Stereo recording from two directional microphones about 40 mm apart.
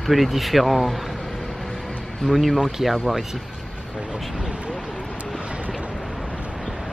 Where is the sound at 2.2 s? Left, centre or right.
Centre.